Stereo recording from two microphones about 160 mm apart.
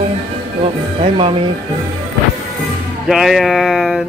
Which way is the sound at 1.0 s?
35° right (ahead or behind).